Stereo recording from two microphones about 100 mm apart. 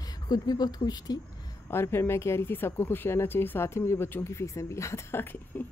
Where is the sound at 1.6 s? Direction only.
25° left (ahead or behind).